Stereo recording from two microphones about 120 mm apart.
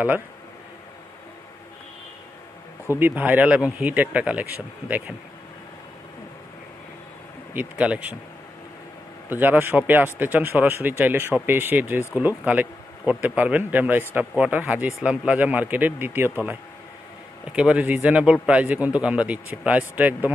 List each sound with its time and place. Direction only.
3.0 s speech: 15° right (ahead or behind)
7.5 s speech: 10° right (ahead or behind)
9.3 s speech: 15° right (ahead or behind)
17.5 s speech: 10° right (ahead or behind)